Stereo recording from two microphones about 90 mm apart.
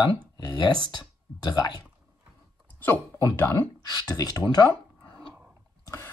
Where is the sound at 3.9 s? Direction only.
45° left (ahead or behind).